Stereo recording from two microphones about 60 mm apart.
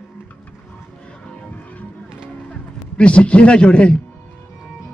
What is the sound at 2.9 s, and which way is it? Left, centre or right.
Speech, centre.